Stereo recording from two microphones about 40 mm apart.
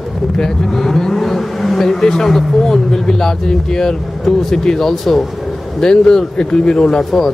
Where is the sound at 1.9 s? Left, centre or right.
Centre.